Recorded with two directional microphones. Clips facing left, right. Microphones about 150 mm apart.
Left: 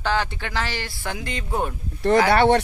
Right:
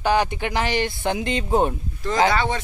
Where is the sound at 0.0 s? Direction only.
15° right (ahead or behind).